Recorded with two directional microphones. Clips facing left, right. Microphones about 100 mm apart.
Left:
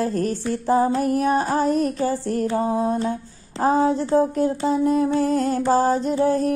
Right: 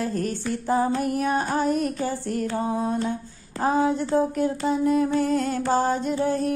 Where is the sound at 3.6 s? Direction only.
30° left (ahead or behind).